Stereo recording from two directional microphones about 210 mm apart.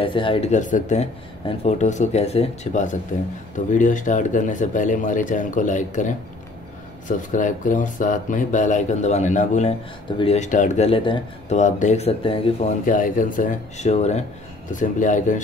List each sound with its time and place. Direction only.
0.0 s speech: 25° left (ahead or behind)
12.8 s speech: 40° left (ahead or behind)